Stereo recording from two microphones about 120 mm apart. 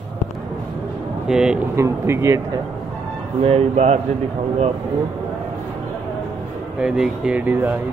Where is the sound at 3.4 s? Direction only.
55° right (ahead or behind).